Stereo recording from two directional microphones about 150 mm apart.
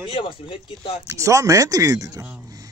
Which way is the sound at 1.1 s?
20° right (ahead or behind).